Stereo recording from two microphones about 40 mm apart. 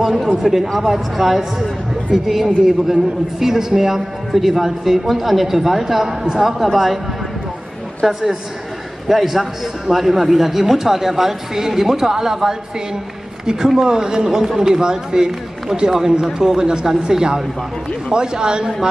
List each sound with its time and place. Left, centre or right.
0.0 s a man's voice: centre
8.1 s a man's voice: centre
13.7 s a man's voice: centre